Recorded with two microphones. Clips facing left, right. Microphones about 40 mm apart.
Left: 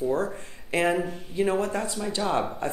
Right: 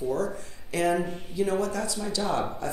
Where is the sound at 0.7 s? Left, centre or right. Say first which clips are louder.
Left 1 dB; left.